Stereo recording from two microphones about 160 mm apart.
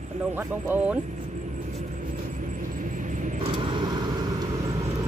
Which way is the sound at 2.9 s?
50° right (ahead or behind).